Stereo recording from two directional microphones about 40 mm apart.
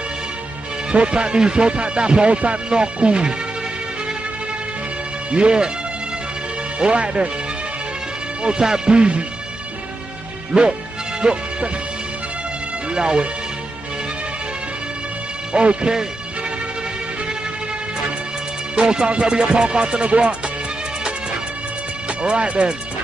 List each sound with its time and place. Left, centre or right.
0.9 s music: right
5.3 s music: right
6.8 s music: right
8.4 s music: centre
10.5 s music: right
12.9 s music: right
15.5 s music: right
18.8 s music: right
22.2 s music: right